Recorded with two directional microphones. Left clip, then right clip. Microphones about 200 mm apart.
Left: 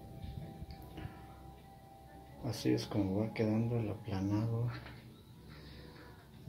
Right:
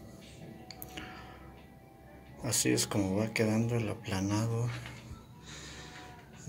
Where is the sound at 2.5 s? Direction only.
5° right (ahead or behind).